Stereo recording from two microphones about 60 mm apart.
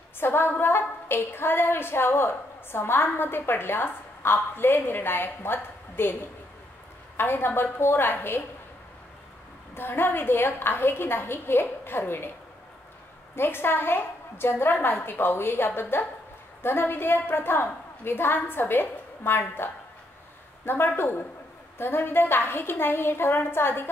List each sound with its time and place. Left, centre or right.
0.2 s a woman's voice: left
7.2 s a woman's voice: left
9.8 s a woman's voice: left
13.4 s a woman's voice: left